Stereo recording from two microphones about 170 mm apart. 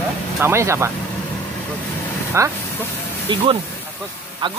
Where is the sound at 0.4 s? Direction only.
15° right (ahead or behind).